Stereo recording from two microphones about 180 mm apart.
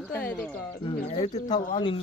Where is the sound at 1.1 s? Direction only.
35° left (ahead or behind).